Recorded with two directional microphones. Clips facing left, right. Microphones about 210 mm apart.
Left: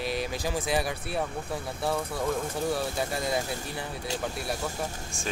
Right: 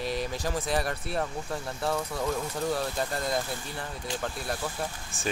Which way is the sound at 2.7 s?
10° left (ahead or behind).